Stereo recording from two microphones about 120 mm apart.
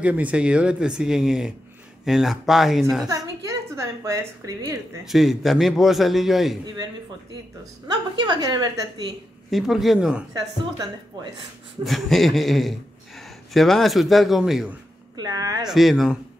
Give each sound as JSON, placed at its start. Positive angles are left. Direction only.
{"t": 0.0, "sound": "a man's voice", "side_deg": -10}
{"t": 3.1, "sound": "a sound", "side_deg": -30}
{"t": 4.0, "sound": "speech", "side_deg": -25}
{"t": 5.0, "sound": "a man's voice", "side_deg": 0}
{"t": 8.2, "sound": "a woman's voice", "side_deg": -35}
{"t": 9.5, "sound": "a man's voice", "side_deg": 0}
{"t": 11.1, "sound": "a woman's voice", "side_deg": -40}
{"t": 11.8, "sound": "a man's voice", "side_deg": 0}
{"t": 15.1, "sound": "a woman's voice", "side_deg": -30}
{"t": 15.7, "sound": "a man's voice", "side_deg": 0}